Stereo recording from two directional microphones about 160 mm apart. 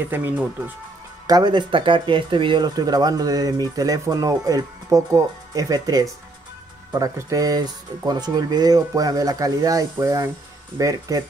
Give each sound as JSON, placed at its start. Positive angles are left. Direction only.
{"t": 0.0, "sound": "speech", "side_deg": -15}
{"t": 1.2, "sound": "speech", "side_deg": -25}